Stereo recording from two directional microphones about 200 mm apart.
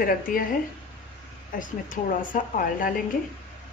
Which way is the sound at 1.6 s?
40° left (ahead or behind).